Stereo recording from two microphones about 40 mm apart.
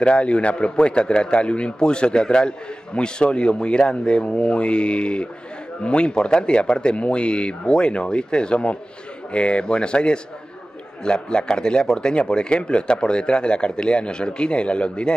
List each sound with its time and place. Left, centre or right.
0.0 s speech: left